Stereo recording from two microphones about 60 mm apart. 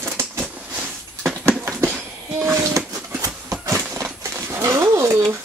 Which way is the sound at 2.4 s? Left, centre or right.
Right.